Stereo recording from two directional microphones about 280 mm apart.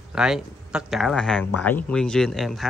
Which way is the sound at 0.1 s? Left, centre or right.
Centre.